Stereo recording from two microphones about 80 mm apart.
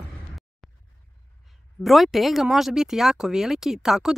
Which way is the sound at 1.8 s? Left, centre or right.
Centre.